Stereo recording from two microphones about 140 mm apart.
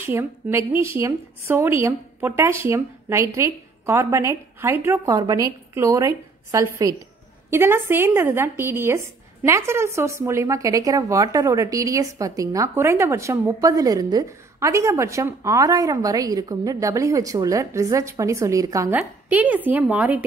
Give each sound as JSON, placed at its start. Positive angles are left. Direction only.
{"t": 0.0, "sound": "speech", "side_deg": -15}
{"t": 5.0, "sound": "speech", "side_deg": -25}
{"t": 18.9, "sound": "a woman's voice", "side_deg": -10}